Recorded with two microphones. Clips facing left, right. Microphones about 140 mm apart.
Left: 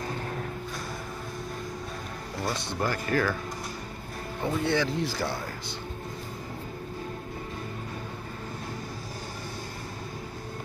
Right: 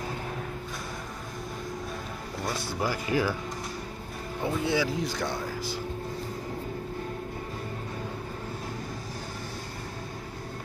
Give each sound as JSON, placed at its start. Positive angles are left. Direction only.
{"t": 2.4, "sound": "speech", "side_deg": -5}
{"t": 4.4, "sound": "speech", "side_deg": -5}